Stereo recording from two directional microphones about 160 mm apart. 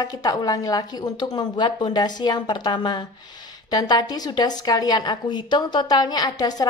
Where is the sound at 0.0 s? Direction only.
25° left (ahead or behind).